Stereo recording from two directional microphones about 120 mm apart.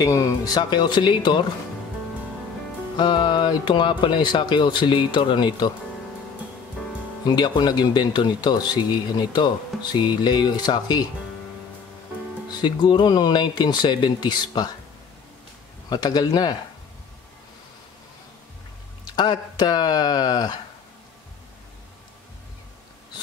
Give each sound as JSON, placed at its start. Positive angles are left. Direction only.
{"t": 0.0, "sound": "speech", "side_deg": 30}
{"t": 3.0, "sound": "speech", "side_deg": 40}
{"t": 7.2, "sound": "speech", "side_deg": 40}
{"t": 9.7, "sound": "music", "side_deg": 5}
{"t": 10.0, "sound": "speech", "side_deg": 35}
{"t": 12.6, "sound": "speech", "side_deg": 40}
{"t": 15.9, "sound": "speech", "side_deg": 35}
{"t": 19.1, "sound": "speech", "side_deg": 35}